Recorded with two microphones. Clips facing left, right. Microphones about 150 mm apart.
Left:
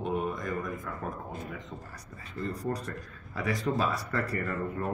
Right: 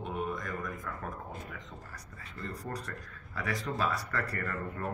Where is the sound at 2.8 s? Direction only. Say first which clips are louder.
Left 4 dB; 20° left (ahead or behind).